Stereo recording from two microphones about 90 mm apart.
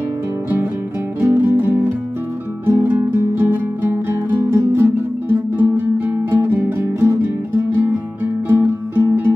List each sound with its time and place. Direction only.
1.2 s music: 25° right (ahead or behind)